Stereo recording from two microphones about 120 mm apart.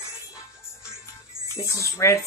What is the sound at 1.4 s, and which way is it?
Music, 25° left (ahead or behind).